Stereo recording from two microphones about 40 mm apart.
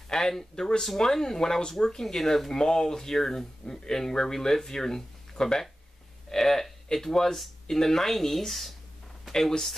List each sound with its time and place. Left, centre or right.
0.1 s speech: centre